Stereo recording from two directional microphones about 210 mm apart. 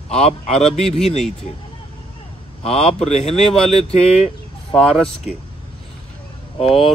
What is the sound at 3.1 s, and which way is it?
Speech, 30° left (ahead or behind).